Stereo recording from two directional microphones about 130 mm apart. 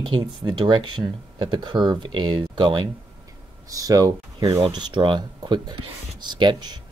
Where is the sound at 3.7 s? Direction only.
30° right (ahead or behind).